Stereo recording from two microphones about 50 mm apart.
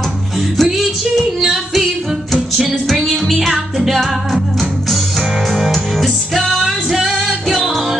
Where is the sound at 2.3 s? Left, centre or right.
Centre.